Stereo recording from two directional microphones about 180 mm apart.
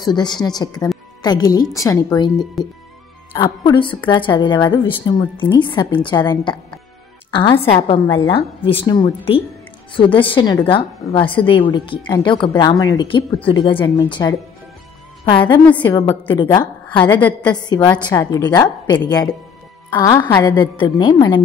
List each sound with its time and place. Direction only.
0.0 s a woman's voice: 25° left (ahead or behind)
15.3 s a woman's voice: 25° left (ahead or behind)
15.6 s a woman's voice: 10° left (ahead or behind)
15.9 s a woman's voice: 25° left (ahead or behind)